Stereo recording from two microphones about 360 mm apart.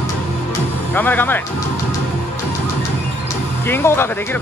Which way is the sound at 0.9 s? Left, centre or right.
Centre.